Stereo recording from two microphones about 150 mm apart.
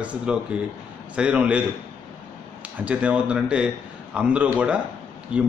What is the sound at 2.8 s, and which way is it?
Speech, 10° right (ahead or behind).